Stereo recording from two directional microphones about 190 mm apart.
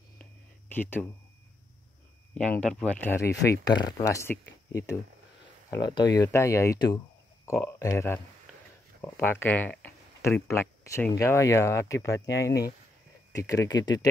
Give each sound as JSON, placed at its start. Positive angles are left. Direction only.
{"t": 0.2, "sound": "a sound", "side_deg": 10}
{"t": 2.3, "sound": "speech", "side_deg": 5}
{"t": 5.7, "sound": "speech", "side_deg": 20}